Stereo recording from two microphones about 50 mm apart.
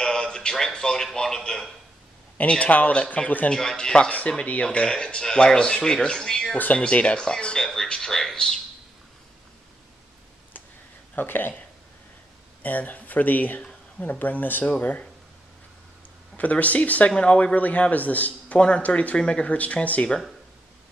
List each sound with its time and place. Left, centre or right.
0.0 s a sound: centre
0.7 s speech: centre
2.6 s speech: left
3.7 s speech: centre
6.8 s speech: left
7.6 s speech: centre
11.1 s speech: left
12.6 s speech: left
13.6 s a sound: left
14.0 s speech: left
16.3 s speech: left
19.1 s speech: centre